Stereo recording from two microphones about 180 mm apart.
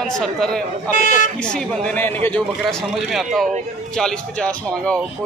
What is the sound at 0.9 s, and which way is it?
Speech, 45° left (ahead or behind).